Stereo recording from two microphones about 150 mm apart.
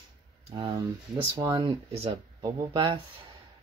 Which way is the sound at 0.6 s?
30° right (ahead or behind).